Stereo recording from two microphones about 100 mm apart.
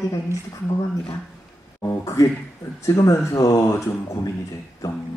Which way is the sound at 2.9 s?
35° left (ahead or behind).